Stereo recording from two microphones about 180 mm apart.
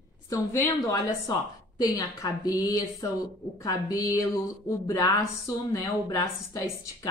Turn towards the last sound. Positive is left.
turn(degrees=15)  # may be behind; listen again after turning